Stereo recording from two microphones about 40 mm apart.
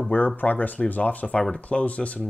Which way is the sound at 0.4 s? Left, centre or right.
Left.